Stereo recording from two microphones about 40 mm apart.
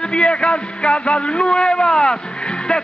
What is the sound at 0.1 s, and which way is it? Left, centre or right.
A man's voice, left.